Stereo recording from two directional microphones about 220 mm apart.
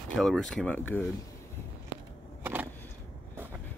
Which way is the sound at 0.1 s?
Centre (ahead or behind).